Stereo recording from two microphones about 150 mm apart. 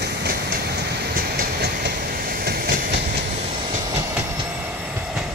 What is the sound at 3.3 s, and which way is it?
Train, 40° right (ahead or behind).